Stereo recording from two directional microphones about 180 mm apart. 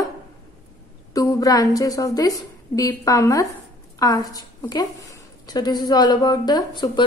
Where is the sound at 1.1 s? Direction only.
20° left (ahead or behind).